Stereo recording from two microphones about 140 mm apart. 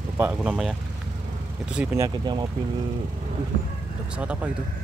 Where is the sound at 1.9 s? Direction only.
25° right (ahead or behind).